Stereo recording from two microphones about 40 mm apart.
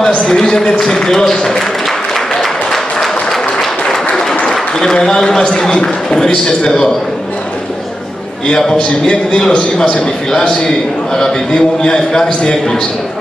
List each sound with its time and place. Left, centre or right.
0.3 s speech: centre
2.1 s applause: centre
5.0 s a man's voice: centre
8.5 s a man's voice: centre
11.1 s a man's voice: left